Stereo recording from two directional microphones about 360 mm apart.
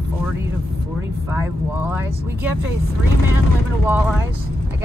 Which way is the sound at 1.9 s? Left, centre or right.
Centre.